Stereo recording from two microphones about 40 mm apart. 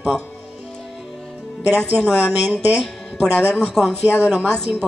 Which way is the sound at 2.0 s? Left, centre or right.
Centre.